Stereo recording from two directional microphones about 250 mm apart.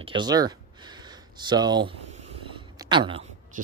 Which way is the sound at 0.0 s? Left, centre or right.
Centre.